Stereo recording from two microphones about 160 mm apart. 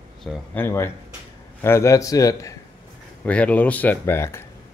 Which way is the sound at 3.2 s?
10° left (ahead or behind).